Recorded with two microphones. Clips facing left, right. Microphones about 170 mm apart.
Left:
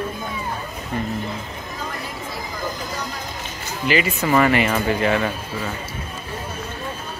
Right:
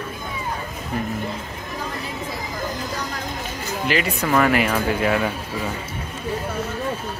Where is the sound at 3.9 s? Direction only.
Centre (ahead or behind).